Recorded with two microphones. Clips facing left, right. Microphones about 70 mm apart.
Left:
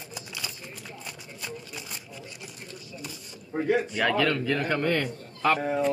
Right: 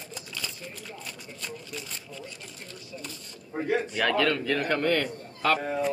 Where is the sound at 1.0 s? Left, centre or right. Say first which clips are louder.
Even; centre.